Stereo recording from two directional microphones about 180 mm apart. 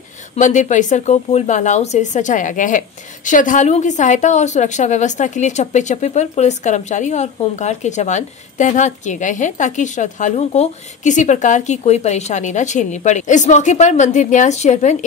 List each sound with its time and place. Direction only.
0.4 s a woman's voice: 40° left (ahead or behind)